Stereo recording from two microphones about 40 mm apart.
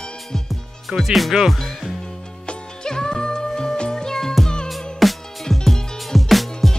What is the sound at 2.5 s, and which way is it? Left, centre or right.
Music, centre.